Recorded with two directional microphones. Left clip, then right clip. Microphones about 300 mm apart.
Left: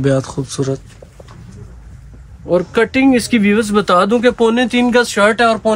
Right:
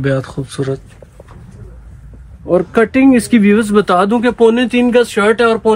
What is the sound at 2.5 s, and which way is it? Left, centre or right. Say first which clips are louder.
Speech: right 2 dB; centre.